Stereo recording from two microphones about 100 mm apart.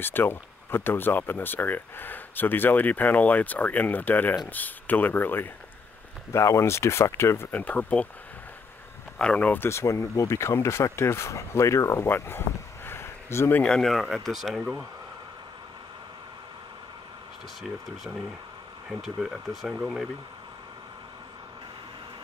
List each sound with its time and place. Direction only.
0.0 s speech: 20° left (ahead or behind)
7.5 s speech: 15° left (ahead or behind)
9.2 s speech: 10° left (ahead or behind)
13.6 s speech: 5° left (ahead or behind)
17.6 s speech: centre (ahead or behind)